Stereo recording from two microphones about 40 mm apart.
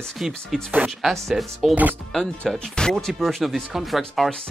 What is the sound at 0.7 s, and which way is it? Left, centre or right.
Speech, right.